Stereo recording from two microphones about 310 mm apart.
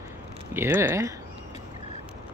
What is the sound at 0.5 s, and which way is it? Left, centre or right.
Speech, centre.